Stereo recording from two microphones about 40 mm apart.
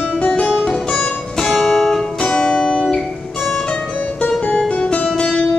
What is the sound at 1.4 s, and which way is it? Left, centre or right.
Music, centre.